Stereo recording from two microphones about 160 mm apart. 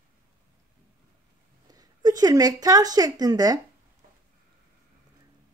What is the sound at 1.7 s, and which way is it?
Speech, 25° right (ahead or behind).